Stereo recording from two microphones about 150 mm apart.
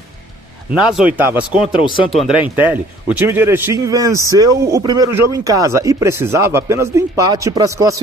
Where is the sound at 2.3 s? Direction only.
35° left (ahead or behind).